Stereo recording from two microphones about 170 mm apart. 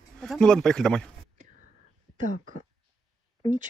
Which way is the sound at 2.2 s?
50° right (ahead or behind).